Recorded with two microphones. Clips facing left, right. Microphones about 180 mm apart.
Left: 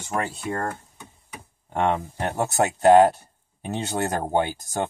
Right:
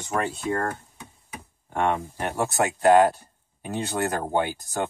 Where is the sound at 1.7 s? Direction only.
20° left (ahead or behind).